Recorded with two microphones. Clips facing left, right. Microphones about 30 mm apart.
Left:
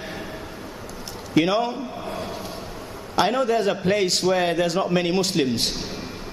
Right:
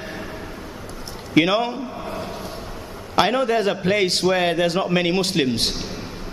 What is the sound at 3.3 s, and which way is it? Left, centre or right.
A man's voice, right.